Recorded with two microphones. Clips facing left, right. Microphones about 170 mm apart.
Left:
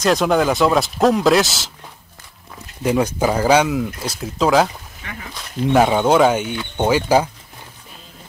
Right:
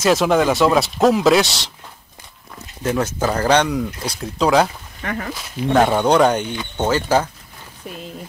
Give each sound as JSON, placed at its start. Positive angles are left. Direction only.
{"t": 0.0, "sound": "speech", "side_deg": 0}
{"t": 2.8, "sound": "speech", "side_deg": 10}
{"t": 5.0, "sound": "speech", "side_deg": -60}
{"t": 5.7, "sound": "speech", "side_deg": 5}